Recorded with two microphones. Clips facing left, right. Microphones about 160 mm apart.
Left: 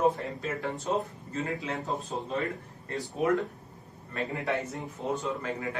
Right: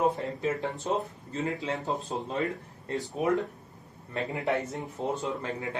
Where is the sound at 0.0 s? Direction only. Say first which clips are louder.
Even; 20° right (ahead or behind).